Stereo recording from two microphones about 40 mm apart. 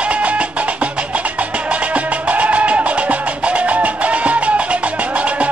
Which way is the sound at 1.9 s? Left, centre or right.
Right.